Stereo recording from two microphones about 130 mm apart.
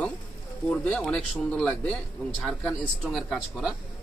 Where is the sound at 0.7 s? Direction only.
5° left (ahead or behind).